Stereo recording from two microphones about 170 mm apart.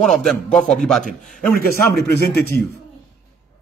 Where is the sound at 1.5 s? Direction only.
60° left (ahead or behind).